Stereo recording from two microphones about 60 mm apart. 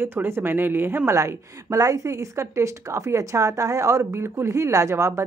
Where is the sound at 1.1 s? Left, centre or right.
Right.